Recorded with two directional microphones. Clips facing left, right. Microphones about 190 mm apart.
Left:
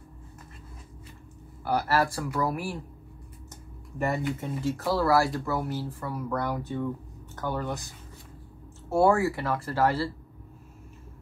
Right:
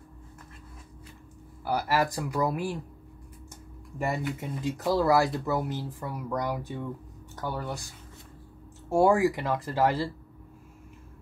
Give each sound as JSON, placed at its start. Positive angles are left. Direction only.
{"t": 1.6, "sound": "speech", "side_deg": -10}
{"t": 4.0, "sound": "speech", "side_deg": -10}
{"t": 8.9, "sound": "speech", "side_deg": -15}